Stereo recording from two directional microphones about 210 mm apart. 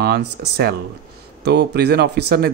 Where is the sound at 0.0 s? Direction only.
50° right (ahead or behind).